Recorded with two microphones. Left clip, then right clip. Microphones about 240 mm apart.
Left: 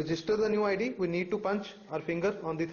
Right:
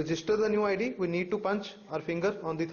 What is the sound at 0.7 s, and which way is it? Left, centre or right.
A man's voice, centre.